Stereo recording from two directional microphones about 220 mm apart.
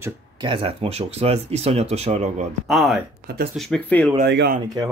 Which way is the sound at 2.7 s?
Centre (ahead or behind).